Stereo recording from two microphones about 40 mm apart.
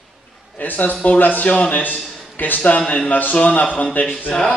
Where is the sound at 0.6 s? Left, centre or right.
Left.